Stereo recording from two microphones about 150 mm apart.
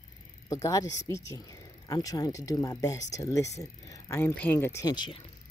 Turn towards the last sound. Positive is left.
turn(degrees=30)  # may be behind; listen again after turning